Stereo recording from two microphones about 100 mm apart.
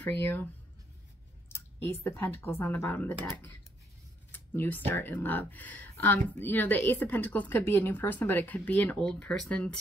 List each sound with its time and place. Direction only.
0.0 s speech: 20° left (ahead or behind)
1.5 s speech: 25° left (ahead or behind); by 9.8 s 10° left (ahead or behind)